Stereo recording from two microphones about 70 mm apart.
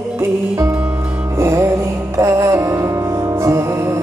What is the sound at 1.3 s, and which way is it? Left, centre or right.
Music, right.